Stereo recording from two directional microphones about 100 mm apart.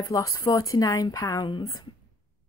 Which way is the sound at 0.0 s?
35° left (ahead or behind).